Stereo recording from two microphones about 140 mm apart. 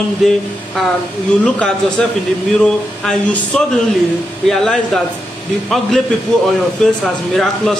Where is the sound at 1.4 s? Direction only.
10° left (ahead or behind).